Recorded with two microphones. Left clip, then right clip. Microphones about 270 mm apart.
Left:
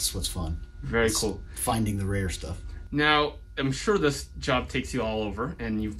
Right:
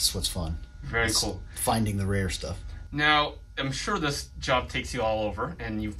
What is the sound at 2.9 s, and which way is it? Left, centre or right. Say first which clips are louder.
Speech: even; centre.